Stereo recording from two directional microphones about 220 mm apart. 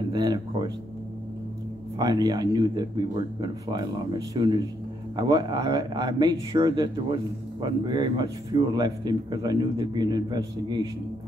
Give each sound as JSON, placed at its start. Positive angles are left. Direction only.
{"t": 0.1, "sound": "speech", "side_deg": -20}
{"t": 2.0, "sound": "speech", "side_deg": -15}